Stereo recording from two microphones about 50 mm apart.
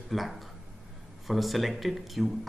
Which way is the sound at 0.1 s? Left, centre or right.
Centre.